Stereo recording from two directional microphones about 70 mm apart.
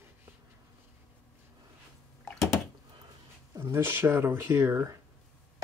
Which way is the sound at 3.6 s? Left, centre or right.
Right.